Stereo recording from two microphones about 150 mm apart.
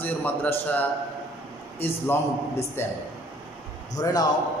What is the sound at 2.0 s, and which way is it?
Speech, 15° left (ahead or behind).